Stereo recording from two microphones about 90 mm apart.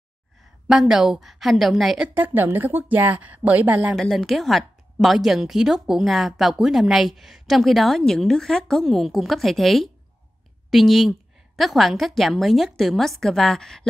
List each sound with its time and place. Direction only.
0.4 s a woman's voice: 5° right (ahead or behind)
2.1 s speech: 20° right (ahead or behind)
3.9 s a woman's voice: 5° left (ahead or behind)